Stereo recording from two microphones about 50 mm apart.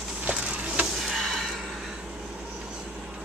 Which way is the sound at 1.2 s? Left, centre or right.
Centre.